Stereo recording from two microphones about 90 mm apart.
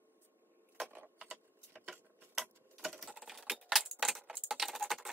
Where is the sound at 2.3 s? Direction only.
5° right (ahead or behind).